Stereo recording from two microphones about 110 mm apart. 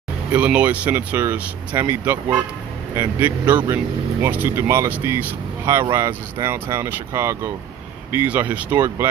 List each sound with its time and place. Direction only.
0.3 s speech: 15° right (ahead or behind)
3.4 s speech: 40° right (ahead or behind)
4.2 s speech: 20° right (ahead or behind)